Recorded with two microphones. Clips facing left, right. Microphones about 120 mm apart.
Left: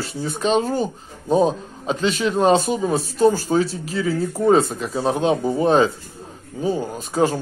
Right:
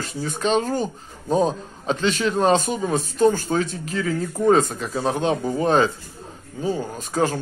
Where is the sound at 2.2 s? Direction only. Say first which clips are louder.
Left 3 dB; 35° left (ahead or behind).